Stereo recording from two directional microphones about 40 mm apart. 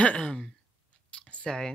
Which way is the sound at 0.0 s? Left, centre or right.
Left.